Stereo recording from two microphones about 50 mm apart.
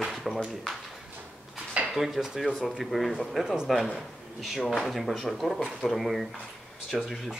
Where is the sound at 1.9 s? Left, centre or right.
Centre.